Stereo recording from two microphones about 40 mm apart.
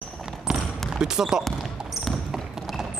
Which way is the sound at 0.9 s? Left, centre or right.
Centre.